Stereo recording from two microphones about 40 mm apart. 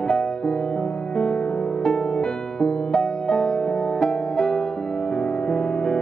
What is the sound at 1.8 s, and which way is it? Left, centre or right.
Music, centre.